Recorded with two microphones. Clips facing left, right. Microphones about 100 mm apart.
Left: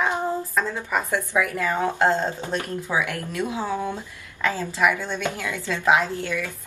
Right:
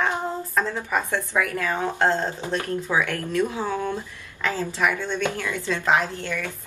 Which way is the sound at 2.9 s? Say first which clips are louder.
Right 1 dB; 10° left (ahead or behind).